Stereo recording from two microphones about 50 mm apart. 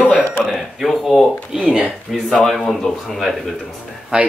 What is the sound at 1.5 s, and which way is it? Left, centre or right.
Speech, centre.